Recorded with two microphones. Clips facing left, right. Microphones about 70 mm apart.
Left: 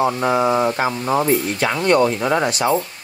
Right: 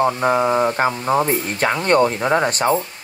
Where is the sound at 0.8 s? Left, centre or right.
Right.